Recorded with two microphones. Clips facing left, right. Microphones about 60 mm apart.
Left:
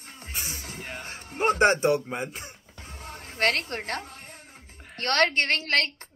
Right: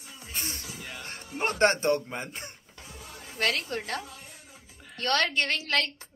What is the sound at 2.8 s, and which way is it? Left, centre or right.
Music, left.